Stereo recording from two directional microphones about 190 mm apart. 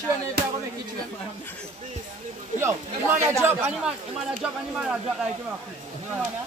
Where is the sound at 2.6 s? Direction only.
15° right (ahead or behind).